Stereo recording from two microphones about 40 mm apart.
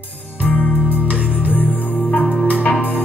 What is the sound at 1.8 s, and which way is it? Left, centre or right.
Music, left.